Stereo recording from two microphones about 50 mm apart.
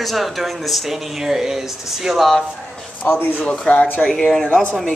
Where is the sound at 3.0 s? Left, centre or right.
Left.